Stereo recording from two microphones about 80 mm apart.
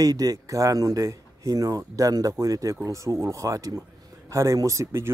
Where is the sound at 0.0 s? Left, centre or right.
Right.